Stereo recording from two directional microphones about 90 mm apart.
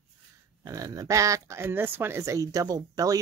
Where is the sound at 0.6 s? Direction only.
40° right (ahead or behind).